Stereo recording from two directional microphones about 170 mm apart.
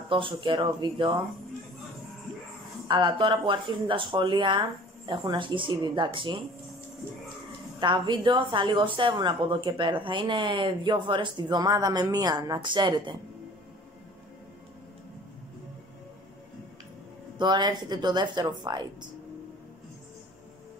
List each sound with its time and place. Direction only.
0.1 s a woman's voice: 30° right (ahead or behind)
2.9 s a woman's voice: 30° right (ahead or behind)
7.8 s a woman's voice: 30° right (ahead or behind)
17.4 s a woman's voice: 25° right (ahead or behind)